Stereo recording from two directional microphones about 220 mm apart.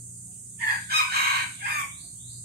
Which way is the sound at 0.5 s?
45° right (ahead or behind).